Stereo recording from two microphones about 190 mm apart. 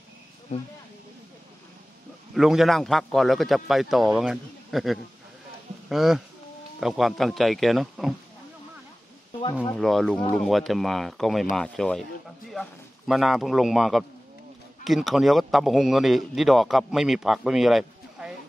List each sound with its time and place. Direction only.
2.3 s a man's voice: centre (ahead or behind)
9.8 s a man's voice: centre (ahead or behind)